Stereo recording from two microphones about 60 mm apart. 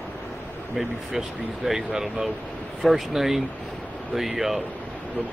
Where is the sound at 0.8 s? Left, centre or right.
Centre.